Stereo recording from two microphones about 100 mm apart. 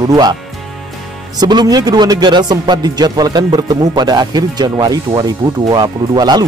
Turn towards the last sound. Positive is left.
turn(degrees=-45)  # may be behind; listen again after turning